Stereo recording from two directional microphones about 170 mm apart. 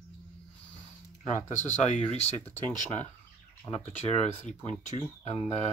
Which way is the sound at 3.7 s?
40° left (ahead or behind).